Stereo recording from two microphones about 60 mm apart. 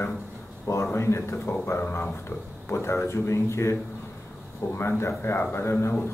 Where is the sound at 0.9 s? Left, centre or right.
Left.